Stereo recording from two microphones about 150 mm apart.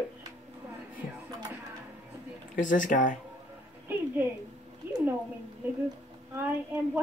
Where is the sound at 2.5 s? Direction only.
60° left (ahead or behind).